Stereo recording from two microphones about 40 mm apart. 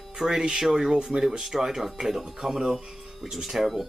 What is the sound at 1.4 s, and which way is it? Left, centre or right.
Speech, centre.